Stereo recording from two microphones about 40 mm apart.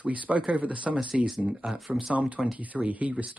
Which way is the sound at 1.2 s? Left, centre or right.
Centre.